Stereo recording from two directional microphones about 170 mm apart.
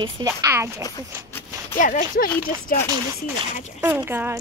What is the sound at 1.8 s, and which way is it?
Speech, 50° left (ahead or behind).